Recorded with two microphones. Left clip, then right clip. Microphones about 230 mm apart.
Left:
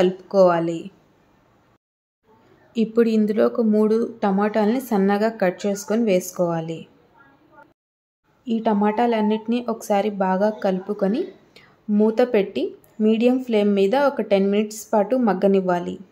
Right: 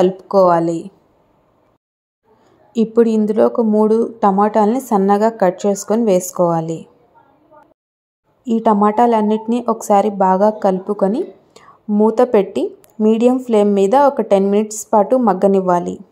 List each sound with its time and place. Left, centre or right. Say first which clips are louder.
0.3 s a woman's voice: right 4 dB; centre
2.7 s a woman's voice: right 6 dB; centre
8.5 s a woman's voice: right 7 dB; centre